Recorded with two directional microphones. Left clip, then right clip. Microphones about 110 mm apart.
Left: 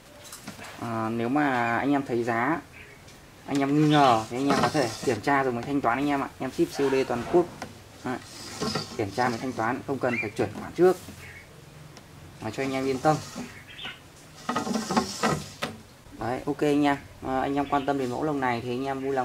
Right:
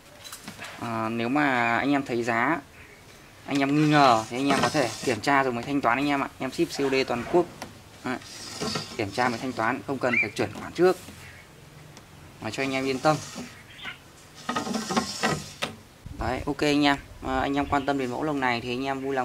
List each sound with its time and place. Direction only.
0.7 s speech: 25° right (ahead or behind)
4.7 s speech: 25° right (ahead or behind)
8.5 s speech: 5° right (ahead or behind)
8.9 s speech: 35° right (ahead or behind)
9.9 s speech: 25° right (ahead or behind)
12.4 s speech: 30° right (ahead or behind)
14.4 s a sound: 5° right (ahead or behind)
16.2 s speech: 30° right (ahead or behind)